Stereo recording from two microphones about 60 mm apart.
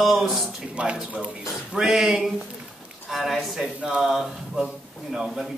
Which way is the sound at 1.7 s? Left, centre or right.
Centre.